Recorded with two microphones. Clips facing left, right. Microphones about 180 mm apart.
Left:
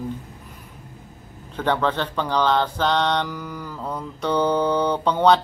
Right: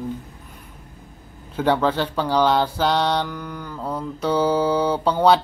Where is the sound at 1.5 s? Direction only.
10° right (ahead or behind).